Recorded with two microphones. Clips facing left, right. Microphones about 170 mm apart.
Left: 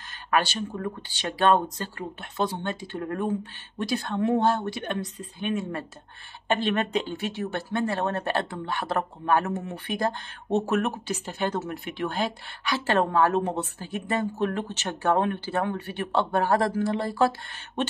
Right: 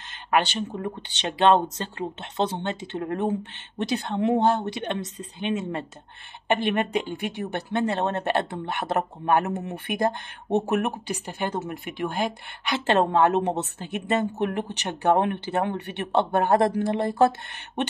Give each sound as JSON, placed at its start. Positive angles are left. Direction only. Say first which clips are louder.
{"t": 0.3, "sound": "speech", "louder": "right 2 dB", "side_deg": -20}